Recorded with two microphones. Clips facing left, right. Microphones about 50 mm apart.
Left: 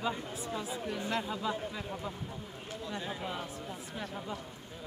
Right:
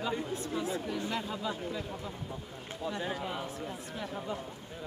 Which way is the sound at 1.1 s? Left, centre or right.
Centre.